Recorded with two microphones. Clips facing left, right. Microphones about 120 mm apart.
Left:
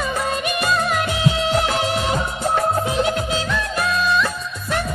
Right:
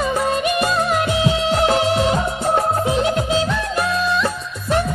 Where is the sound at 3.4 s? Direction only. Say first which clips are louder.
Right 2 dB; 25° right (ahead or behind).